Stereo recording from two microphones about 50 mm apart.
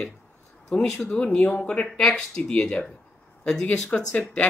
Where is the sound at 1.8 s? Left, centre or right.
Centre.